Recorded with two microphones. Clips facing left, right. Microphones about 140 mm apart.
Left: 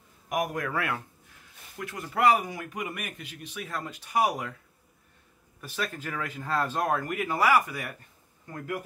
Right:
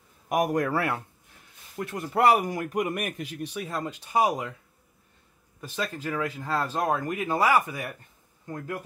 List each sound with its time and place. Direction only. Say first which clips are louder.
0.3 s speech: right 5 dB; 35° right (ahead or behind)
2.3 s speech: right 5 dB; 45° right (ahead or behind); by 4.6 s 20° right (ahead or behind)
5.6 s speech: right 2 dB; 20° right (ahead or behind)